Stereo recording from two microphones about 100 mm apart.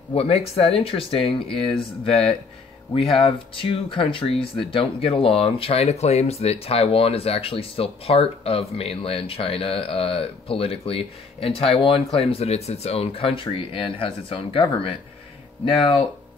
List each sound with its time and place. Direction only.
0.1 s speech: 85° left; by 2.2 s 70° left (ahead or behind)
3.3 s speech: 65° left (ahead or behind)